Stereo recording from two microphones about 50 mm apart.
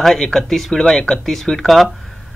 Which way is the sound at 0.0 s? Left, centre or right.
Centre.